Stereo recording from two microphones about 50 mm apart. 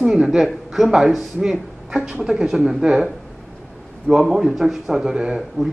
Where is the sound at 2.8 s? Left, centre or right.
Centre.